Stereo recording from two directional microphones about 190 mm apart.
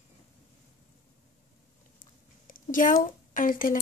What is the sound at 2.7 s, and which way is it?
Speech, 45° left (ahead or behind).